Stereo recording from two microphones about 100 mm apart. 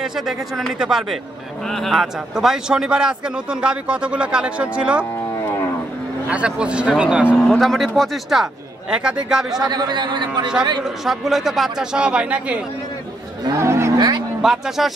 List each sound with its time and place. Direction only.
0.0 s a man's voice: 5° right (ahead or behind)
6.2 s a man's voice: 10° right (ahead or behind)
7.3 s a man's voice: 5° left (ahead or behind)
9.7 s a man's voice: 45° right (ahead or behind)
10.8 s a man's voice: centre (ahead or behind)
13.4 s a sound: 35° right (ahead or behind)
13.9 s a sound: 50° right (ahead or behind)
14.4 s speech: 5° right (ahead or behind)